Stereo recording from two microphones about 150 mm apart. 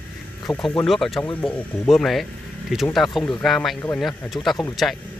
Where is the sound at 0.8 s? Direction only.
Centre (ahead or behind).